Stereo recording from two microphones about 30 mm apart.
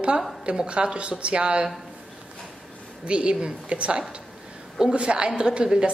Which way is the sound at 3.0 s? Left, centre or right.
Right.